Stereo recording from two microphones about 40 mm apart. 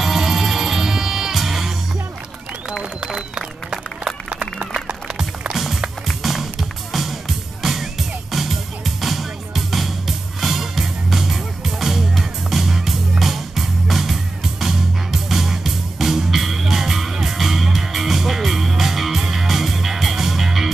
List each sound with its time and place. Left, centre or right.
0.0 s music: centre
2.8 s a sound: right
3.2 s music: centre
6.0 s music: centre